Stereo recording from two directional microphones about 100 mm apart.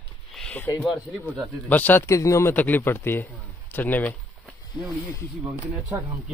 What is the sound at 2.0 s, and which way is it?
Speech, 30° left (ahead or behind).